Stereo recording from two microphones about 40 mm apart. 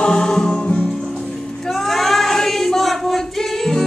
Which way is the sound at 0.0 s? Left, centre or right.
Centre.